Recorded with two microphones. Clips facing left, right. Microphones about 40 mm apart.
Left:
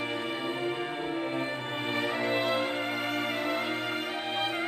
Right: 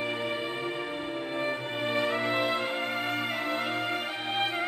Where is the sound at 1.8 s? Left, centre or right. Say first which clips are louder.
Right 3 dB; centre.